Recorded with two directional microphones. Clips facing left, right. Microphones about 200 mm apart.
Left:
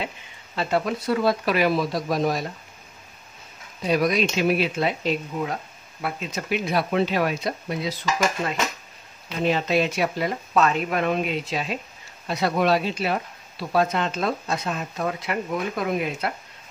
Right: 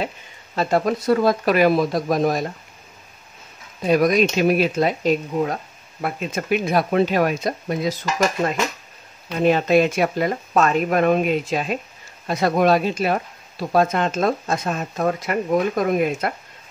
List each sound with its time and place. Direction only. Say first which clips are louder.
0.6 s speech: right 4 dB; 45° right (ahead or behind)
3.8 s speech: right 5 dB; 50° right (ahead or behind)
9.4 s speech: right 6 dB; 50° right (ahead or behind)